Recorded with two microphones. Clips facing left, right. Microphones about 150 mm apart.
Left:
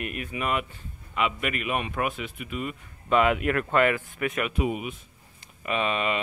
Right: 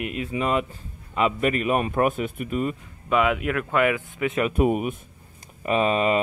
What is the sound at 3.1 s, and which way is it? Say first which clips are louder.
Speech: even; centre (ahead or behind).